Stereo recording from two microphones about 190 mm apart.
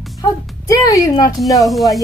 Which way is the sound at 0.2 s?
20° left (ahead or behind).